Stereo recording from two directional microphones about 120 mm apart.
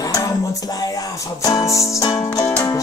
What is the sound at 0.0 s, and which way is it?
Music, 30° left (ahead or behind).